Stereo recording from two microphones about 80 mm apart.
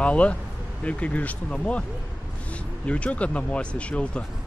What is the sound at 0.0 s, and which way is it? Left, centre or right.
Speech, centre.